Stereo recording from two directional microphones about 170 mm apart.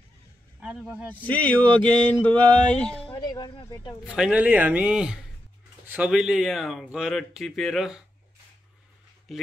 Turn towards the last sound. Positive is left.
turn(degrees=0)  # may be behind; listen again after turning